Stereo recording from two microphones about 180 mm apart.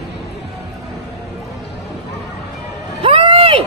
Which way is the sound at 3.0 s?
30° right (ahead or behind).